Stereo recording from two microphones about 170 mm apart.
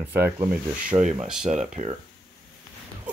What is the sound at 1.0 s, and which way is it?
Speech, 40° right (ahead or behind).